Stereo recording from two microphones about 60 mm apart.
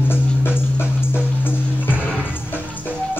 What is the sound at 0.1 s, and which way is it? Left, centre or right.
Music, left.